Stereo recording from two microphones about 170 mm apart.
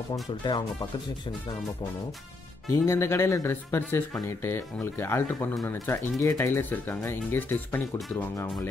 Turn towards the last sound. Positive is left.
turn(degrees=10)  # may be behind; listen again after turning